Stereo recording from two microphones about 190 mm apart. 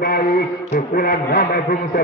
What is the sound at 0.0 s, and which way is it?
A man's voice, 50° left (ahead or behind).